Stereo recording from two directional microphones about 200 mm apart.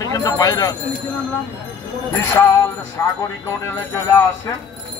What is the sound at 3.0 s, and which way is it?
Speech, 10° left (ahead or behind).